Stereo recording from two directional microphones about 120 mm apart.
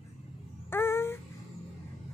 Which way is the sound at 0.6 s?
20° left (ahead or behind).